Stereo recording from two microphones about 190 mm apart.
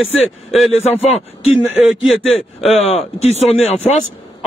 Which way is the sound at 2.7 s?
35° left (ahead or behind).